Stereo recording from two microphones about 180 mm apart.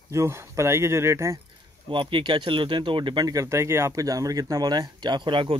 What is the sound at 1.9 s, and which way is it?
Speech, 30° right (ahead or behind).